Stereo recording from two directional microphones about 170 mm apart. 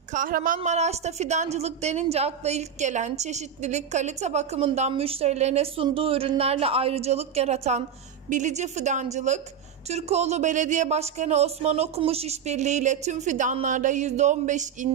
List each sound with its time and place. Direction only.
0.1 s speech: 55° right (ahead or behind)
0.6 s a woman's voice: 40° right (ahead or behind)